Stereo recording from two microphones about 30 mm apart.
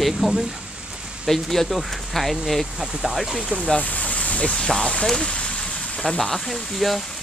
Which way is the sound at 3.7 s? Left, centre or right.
Left.